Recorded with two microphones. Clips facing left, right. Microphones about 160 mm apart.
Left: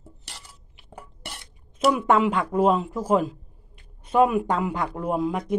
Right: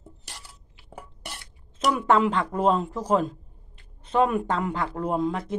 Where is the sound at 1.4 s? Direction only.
15° left (ahead or behind).